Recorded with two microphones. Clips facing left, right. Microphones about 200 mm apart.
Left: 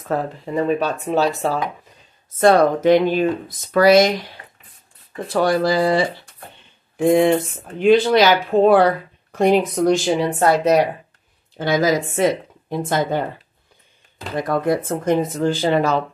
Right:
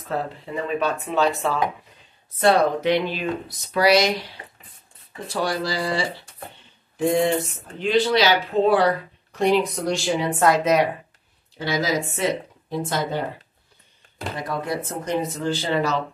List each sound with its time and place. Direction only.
0.1 s speech: 45° left (ahead or behind)
5.3 s speech: 55° left (ahead or behind)
7.1 s speech: 55° left (ahead or behind)
10.4 s speech: 35° left (ahead or behind)
11.5 s a woman's voice: 50° left (ahead or behind)
14.3 s speech: 50° left (ahead or behind)